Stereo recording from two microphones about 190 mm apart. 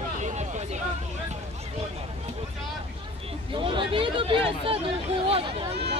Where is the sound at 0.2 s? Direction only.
35° right (ahead or behind).